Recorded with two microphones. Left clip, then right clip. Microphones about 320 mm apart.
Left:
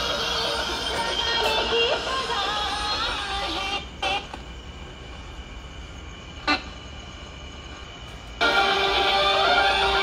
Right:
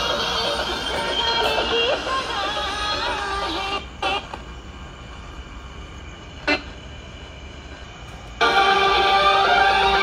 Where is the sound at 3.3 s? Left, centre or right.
Centre.